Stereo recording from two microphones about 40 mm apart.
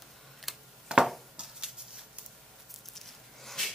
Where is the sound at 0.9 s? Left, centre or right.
Right.